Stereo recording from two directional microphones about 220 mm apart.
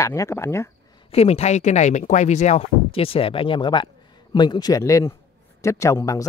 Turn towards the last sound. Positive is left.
turn(degrees=15)  # may be behind; listen again after turning